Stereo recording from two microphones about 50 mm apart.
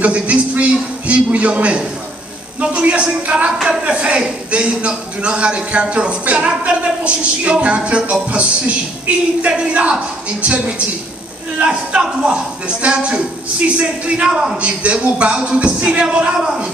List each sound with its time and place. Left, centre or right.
0.0 s a man's voice: right
9.5 s a man's voice: right